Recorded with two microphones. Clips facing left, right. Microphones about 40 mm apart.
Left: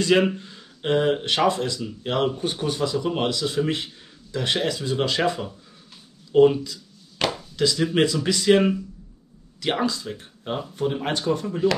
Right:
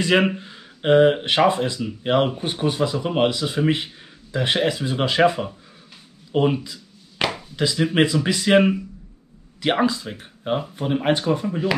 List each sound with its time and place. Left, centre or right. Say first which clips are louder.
0.0 s speech: right 1 dB; right
6.3 s a sound: left 4 dB; right
7.5 s speech: right 2 dB; centre